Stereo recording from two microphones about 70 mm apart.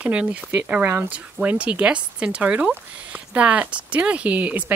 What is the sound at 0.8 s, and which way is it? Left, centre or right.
Speech, right.